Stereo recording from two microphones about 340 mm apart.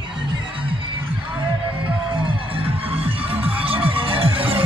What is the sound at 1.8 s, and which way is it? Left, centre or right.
Music, centre.